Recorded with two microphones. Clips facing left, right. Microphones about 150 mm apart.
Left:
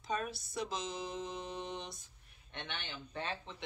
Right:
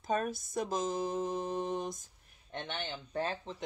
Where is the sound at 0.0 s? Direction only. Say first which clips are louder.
Right 5 dB; 45° right (ahead or behind).